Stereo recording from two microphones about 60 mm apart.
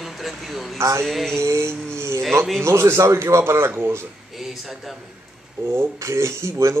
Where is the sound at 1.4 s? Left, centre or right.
Right.